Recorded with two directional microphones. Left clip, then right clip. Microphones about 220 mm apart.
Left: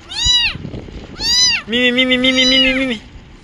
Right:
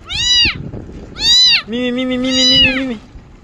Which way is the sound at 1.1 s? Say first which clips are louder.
Right 4 dB; 35° right (ahead or behind).